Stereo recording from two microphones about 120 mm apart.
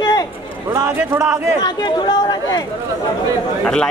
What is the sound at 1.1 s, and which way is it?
Speech, 15° right (ahead or behind).